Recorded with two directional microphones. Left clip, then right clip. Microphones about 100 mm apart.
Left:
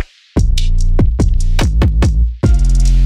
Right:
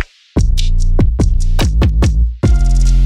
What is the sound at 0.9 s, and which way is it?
Music, 15° left (ahead or behind).